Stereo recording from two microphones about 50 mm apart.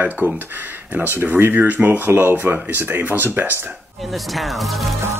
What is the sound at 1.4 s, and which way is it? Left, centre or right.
Speech, right.